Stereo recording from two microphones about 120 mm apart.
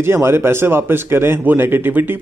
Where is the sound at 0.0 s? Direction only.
20° right (ahead or behind).